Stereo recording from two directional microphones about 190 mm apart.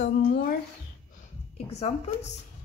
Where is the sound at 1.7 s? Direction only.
35° left (ahead or behind).